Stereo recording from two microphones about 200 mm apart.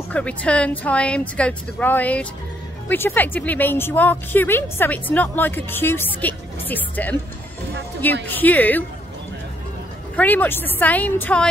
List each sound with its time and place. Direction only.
0.1 s a woman's voice: 5° left (ahead or behind)
10.1 s a woman's voice: 10° left (ahead or behind)